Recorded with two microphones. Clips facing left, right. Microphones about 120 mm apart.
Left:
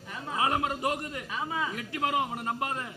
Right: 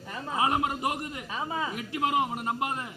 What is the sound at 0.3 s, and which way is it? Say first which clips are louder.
Speech: right 1 dB; 25° right (ahead or behind).